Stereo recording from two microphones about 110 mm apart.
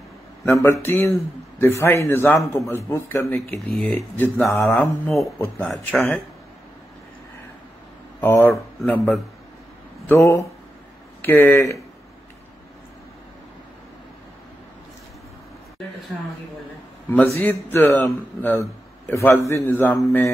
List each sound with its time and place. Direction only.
0.5 s a man's voice: 25° left (ahead or behind)
3.5 s speech: centre (ahead or behind)
3.9 s speech: 15° left (ahead or behind)
8.2 s a man's voice: 20° left (ahead or behind)
17.1 s a man's voice: 20° left (ahead or behind)